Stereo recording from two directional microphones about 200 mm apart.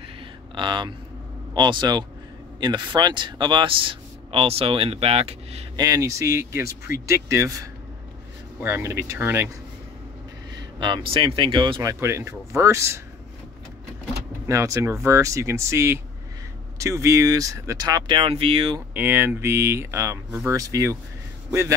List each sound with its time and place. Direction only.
0.6 s speech: 25° right (ahead or behind)
5.8 s speech: 15° right (ahead or behind)
8.6 s speech: 15° right (ahead or behind)
10.8 s speech: 25° right (ahead or behind)
14.5 s speech: 15° right (ahead or behind)
18.9 s a man's voice: 10° right (ahead or behind)